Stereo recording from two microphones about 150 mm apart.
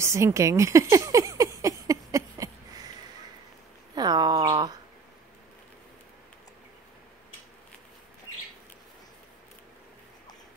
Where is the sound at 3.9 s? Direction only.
30° right (ahead or behind).